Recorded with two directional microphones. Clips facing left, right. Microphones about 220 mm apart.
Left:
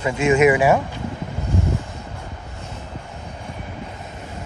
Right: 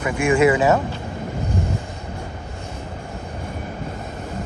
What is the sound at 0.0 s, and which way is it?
Speech, 25° left (ahead or behind).